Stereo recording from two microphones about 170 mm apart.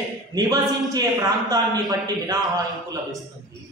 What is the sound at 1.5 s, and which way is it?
Speech, 20° right (ahead or behind).